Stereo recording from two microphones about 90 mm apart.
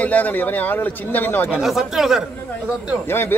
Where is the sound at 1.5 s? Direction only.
5° right (ahead or behind).